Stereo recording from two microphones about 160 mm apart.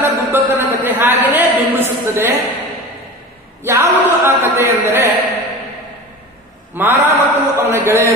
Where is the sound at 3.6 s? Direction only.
15° right (ahead or behind).